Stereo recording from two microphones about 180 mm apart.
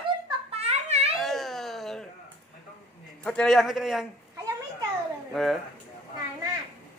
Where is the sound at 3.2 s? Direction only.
5° left (ahead or behind).